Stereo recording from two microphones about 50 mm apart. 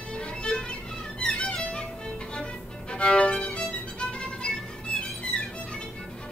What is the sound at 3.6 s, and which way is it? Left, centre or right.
Music, left.